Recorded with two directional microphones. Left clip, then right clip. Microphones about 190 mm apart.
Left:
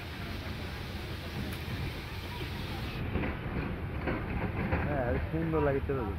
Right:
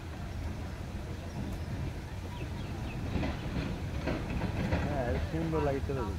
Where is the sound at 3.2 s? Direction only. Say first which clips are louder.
Even; 70° right (ahead or behind).